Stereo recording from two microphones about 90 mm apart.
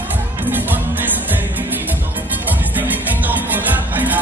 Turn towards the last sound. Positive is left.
turn(degrees=-20)  # may be behind; listen again after turning